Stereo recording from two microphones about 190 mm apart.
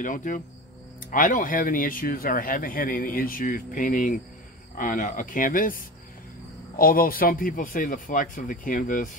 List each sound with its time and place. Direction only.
0.0 s speech: 40° left (ahead or behind)
6.8 s speech: 50° left (ahead or behind)